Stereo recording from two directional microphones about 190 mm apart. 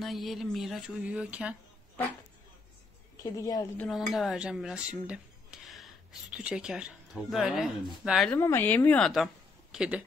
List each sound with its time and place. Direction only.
0.0 s speech: centre (ahead or behind)
3.2 s speech: 20° left (ahead or behind)
3.8 s speech: centre (ahead or behind)
8.3 s speech: 10° left (ahead or behind); by 10.0 s 5° right (ahead or behind)